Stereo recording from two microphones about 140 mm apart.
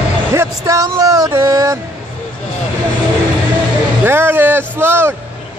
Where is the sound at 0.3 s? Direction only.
20° right (ahead or behind).